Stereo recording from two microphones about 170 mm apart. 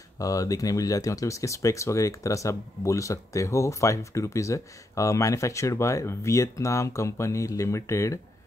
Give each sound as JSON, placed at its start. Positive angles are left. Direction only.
{"t": 0.2, "sound": "speech", "side_deg": 20}